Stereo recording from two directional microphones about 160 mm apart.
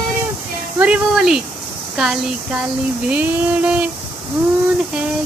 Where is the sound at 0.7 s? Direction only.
5° right (ahead or behind).